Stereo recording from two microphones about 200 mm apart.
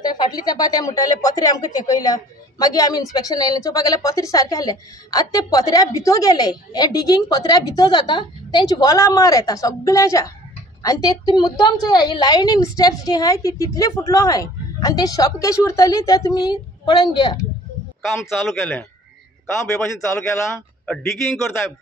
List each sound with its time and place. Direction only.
0.0 s a woman's voice: 20° left (ahead or behind)
18.2 s a man's voice: 5° left (ahead or behind)
20.8 s a man's voice: centre (ahead or behind)